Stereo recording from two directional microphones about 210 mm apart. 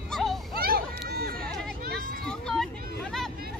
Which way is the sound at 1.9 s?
5° left (ahead or behind).